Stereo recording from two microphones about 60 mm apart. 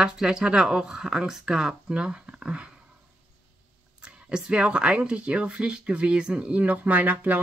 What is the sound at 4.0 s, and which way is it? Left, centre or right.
Speech, centre.